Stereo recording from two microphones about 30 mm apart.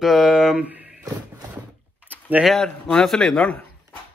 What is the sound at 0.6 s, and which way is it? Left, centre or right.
Speech, right.